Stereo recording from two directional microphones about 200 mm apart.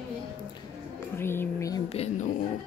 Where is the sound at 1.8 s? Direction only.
30° left (ahead or behind).